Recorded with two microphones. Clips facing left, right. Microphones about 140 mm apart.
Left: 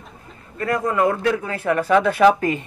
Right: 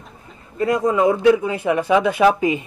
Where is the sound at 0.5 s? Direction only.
15° right (ahead or behind).